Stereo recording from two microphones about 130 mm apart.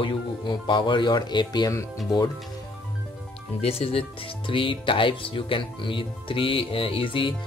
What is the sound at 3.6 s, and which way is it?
Speech, 50° left (ahead or behind).